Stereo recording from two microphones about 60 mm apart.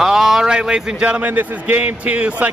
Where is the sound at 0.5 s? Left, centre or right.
Centre.